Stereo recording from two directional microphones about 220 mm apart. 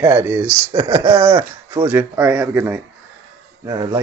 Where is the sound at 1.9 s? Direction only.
10° right (ahead or behind).